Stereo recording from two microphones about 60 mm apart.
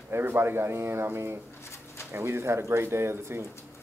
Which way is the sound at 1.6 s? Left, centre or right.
Left.